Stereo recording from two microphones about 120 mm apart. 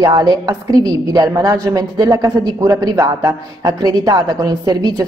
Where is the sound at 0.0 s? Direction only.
35° right (ahead or behind).